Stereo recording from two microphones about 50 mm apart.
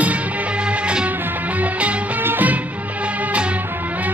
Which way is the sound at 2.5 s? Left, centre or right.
Right.